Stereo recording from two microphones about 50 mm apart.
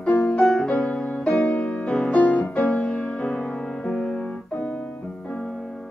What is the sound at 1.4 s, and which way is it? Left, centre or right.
Music, left.